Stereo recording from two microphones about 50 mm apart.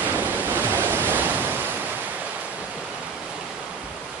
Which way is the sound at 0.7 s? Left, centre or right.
Right.